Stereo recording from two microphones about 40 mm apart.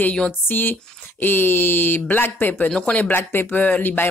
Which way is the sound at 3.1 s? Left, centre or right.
Left.